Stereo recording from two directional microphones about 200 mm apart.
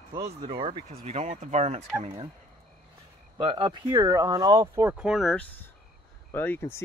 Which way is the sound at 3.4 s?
25° right (ahead or behind).